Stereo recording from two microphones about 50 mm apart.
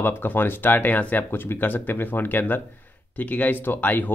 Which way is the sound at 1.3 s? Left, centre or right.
Left.